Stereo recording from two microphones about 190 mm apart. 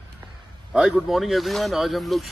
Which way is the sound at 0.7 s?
Centre (ahead or behind).